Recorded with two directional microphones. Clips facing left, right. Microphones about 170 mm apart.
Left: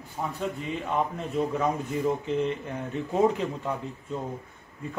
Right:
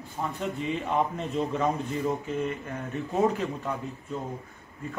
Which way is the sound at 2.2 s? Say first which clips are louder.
Left 3 dB; 20° left (ahead or behind).